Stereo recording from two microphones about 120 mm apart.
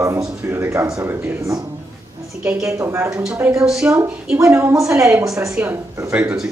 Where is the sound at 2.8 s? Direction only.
25° right (ahead or behind).